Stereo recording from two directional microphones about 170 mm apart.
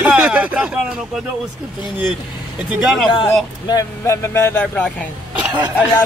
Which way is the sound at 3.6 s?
20° left (ahead or behind).